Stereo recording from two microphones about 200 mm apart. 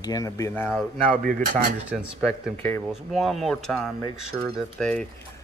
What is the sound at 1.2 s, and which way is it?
Speech, 45° right (ahead or behind).